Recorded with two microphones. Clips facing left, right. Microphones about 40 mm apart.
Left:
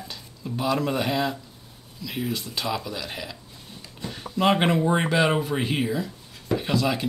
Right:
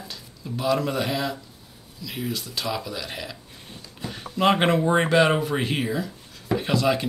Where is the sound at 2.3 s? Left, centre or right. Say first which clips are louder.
Left 1 dB; left.